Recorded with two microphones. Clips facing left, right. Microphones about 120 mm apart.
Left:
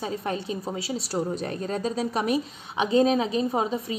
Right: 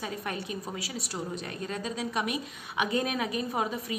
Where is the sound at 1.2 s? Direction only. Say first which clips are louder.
Left 7 dB; 40° left (ahead or behind).